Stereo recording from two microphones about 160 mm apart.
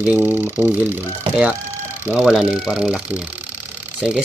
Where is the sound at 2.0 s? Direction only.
5° right (ahead or behind).